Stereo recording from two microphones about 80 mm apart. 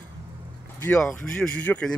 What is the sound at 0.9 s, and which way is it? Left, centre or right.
Speech, centre.